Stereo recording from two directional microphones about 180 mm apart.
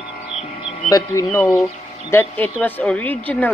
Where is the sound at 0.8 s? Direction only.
20° left (ahead or behind).